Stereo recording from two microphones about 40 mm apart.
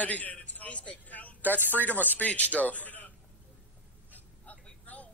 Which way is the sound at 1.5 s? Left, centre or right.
Right.